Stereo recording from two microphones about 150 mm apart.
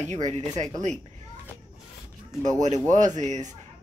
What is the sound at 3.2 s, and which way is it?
Speech, 50° right (ahead or behind).